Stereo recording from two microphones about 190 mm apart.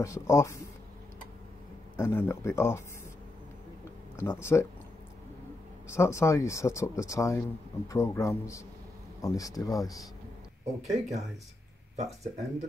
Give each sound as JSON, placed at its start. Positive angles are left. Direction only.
{"t": 0.0, "sound": "speech", "side_deg": 15}
{"t": 2.0, "sound": "speech", "side_deg": 15}
{"t": 4.2, "sound": "speech", "side_deg": 15}
{"t": 5.9, "sound": "speech", "side_deg": 15}
{"t": 10.8, "sound": "speech", "side_deg": -35}